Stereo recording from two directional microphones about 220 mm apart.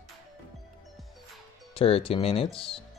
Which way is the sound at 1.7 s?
25° left (ahead or behind).